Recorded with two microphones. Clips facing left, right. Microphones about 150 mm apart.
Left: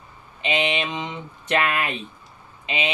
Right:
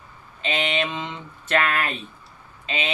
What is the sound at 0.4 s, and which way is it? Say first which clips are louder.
Speech: left 1 dB; 15° left (ahead or behind).